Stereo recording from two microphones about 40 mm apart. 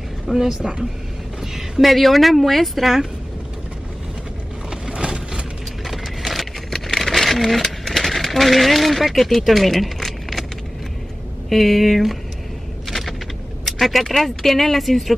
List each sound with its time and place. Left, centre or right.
0.3 s a woman's voice: centre
1.5 s speech: centre
4.6 s a sound: centre
5.9 s vehicle: centre
6.7 s a sound: centre
11.4 s speech: centre
13.7 s speech: centre